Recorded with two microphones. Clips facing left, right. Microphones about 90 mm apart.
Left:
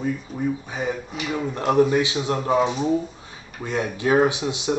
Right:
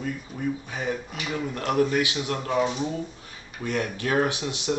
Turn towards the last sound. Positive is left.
turn(degrees=20)  # may be behind; listen again after turning